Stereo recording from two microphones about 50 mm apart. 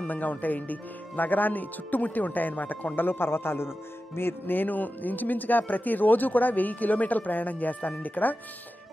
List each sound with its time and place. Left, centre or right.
0.0 s speech: left
3.0 s a man's voice: left